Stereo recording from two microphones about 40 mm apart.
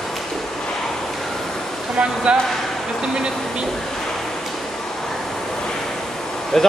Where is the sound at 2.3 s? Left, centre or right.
Right.